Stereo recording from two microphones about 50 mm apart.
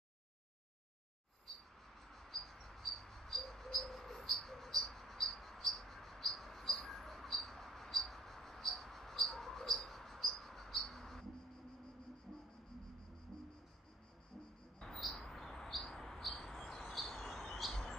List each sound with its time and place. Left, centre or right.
2.0 s bird: centre
14.8 s bird: centre